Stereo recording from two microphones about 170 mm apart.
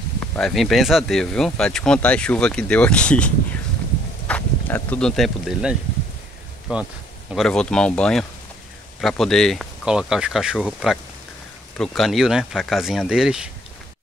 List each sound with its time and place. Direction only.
0.4 s speech: centre (ahead or behind)
4.3 s speech: 10° left (ahead or behind)